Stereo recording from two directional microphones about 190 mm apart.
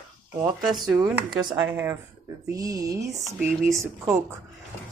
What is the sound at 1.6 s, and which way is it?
Speech, 10° right (ahead or behind).